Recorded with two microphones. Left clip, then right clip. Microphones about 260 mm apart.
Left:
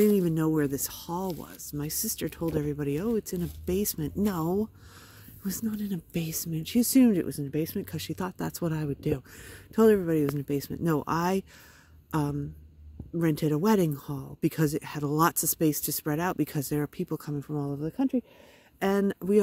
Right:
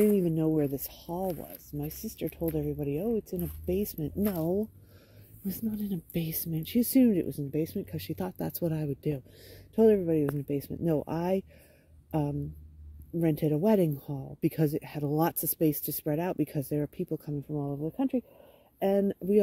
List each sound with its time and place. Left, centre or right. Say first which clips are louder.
0.2 s a sound: left 1 dB; left
0.6 s speech: left 2 dB; left
5.4 s speech: left 2 dB; centre